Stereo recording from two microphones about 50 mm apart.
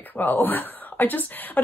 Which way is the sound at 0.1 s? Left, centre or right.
Left.